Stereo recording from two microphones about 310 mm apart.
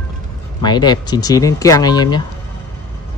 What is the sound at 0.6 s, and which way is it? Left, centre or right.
Speech, centre.